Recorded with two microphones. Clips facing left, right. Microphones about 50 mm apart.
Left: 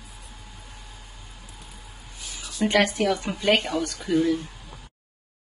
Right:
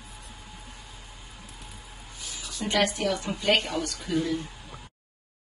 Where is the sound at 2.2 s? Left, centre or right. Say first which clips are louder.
Left 1 dB; centre.